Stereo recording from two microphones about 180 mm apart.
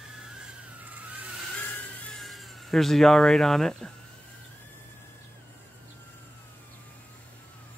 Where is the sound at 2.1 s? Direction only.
Centre (ahead or behind).